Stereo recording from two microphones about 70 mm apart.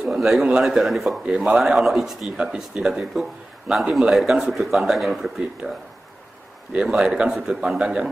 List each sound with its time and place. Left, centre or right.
0.0 s a man's voice: centre
1.2 s a man's voice: centre
1.6 s a man's voice: centre
5.6 s speech: right
6.7 s a man's voice: centre